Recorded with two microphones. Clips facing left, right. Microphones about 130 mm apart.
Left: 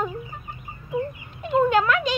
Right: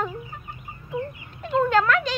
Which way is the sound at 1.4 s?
10° left (ahead or behind).